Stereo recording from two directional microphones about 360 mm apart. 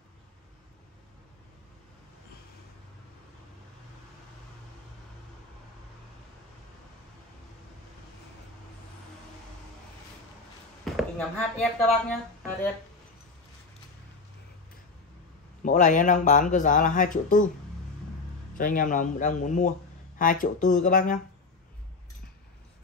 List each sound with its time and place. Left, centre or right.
11.0 s speech: centre
15.6 s speech: left
18.6 s speech: left